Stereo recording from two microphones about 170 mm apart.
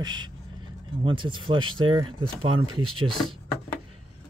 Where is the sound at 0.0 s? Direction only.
25° right (ahead or behind).